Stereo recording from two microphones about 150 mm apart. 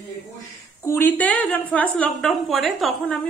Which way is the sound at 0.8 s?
15° left (ahead or behind).